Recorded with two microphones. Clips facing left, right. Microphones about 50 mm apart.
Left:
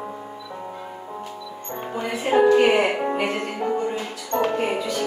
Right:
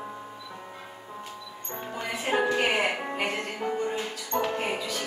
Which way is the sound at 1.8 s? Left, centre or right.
Left.